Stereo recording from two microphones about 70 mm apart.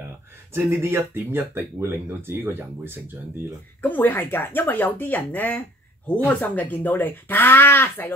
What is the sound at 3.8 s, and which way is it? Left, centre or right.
Speech, left.